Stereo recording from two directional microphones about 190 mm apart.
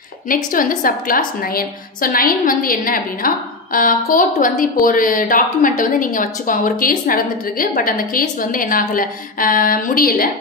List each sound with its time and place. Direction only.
0.3 s a woman's voice: 45° left (ahead or behind)